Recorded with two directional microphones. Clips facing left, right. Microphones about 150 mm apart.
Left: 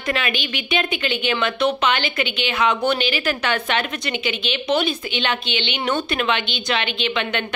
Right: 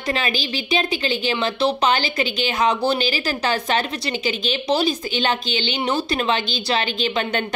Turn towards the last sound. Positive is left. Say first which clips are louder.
# right 1 dB
turn(degrees=-40)  # may be behind; listen again after turning